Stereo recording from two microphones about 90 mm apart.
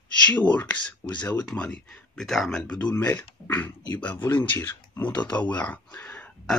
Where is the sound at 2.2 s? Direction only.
5° left (ahead or behind).